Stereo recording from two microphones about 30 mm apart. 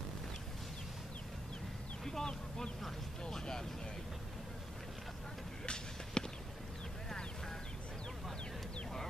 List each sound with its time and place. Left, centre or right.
2.0 s a sound: centre
2.8 s vehicle: centre
5.7 s basketball bounce: left